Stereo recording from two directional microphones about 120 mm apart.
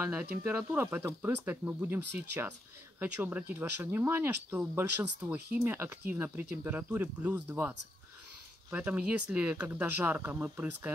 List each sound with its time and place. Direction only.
0.0 s speech: 15° right (ahead or behind)